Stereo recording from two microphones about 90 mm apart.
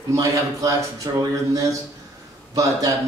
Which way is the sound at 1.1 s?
50° right (ahead or behind).